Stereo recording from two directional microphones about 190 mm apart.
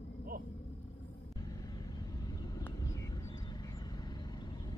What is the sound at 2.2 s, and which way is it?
Vehicle, 20° left (ahead or behind).